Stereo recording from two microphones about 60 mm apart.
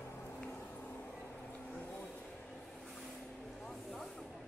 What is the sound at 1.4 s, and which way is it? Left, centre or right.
Vehicle, left.